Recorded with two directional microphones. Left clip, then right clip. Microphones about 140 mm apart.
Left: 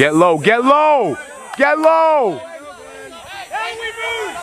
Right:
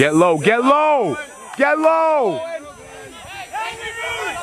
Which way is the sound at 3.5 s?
15° left (ahead or behind).